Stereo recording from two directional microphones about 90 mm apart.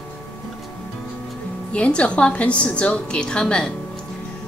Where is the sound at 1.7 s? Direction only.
15° left (ahead or behind).